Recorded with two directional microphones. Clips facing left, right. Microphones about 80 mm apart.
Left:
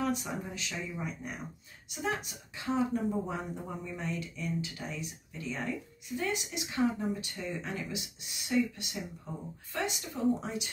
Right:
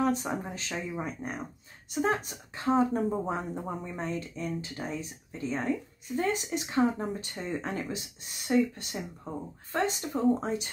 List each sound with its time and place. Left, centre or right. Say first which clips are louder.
0.0 s speech: right 5 dB; right